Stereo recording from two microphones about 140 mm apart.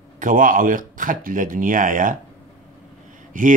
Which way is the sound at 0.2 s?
75° right (ahead or behind).